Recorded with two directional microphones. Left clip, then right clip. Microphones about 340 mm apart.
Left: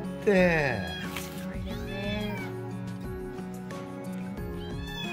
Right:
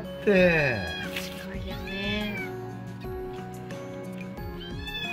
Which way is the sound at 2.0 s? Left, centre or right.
Centre.